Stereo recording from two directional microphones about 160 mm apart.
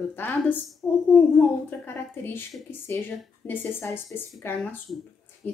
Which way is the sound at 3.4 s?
15° left (ahead or behind).